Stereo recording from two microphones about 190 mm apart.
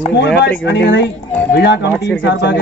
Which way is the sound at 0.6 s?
65° left (ahead or behind).